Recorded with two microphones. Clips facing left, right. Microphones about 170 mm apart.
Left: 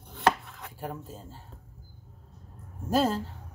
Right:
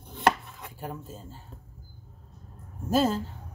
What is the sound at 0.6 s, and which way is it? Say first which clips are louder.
Chopping: left 1 dB; centre (ahead or behind).